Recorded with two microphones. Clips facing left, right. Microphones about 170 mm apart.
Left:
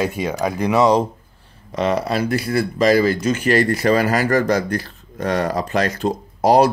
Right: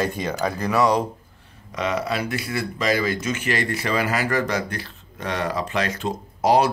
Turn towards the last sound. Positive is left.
turn(degrees=40)  # may be behind; listen again after turning